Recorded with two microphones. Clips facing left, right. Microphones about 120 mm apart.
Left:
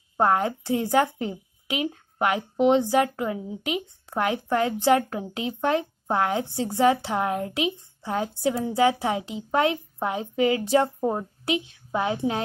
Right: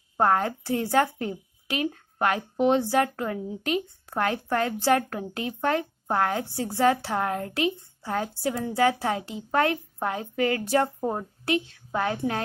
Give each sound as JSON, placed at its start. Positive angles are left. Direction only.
{"t": 0.2, "sound": "speech", "side_deg": 15}
{"t": 11.0, "sound": "a woman's voice", "side_deg": 5}
{"t": 11.4, "sound": "a woman's voice", "side_deg": 20}